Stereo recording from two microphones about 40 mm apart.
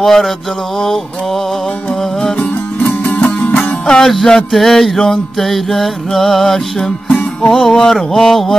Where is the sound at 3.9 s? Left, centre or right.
Centre.